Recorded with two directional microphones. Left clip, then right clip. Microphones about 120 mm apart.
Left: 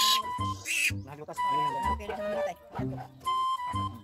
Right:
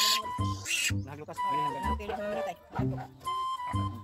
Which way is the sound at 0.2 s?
Centre (ahead or behind).